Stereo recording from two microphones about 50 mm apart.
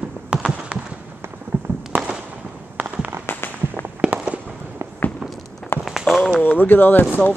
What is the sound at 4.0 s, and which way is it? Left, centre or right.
Walk, right.